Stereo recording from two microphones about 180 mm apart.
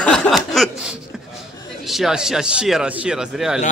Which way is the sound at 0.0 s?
5° left (ahead or behind).